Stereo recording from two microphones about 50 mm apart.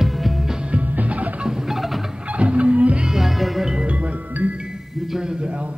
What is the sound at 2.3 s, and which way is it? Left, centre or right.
Music, right.